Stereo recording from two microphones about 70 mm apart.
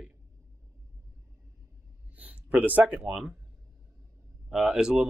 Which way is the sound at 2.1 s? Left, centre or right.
Right.